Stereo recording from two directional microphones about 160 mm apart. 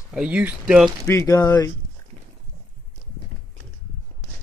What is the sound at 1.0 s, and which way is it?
Speech, 20° left (ahead or behind).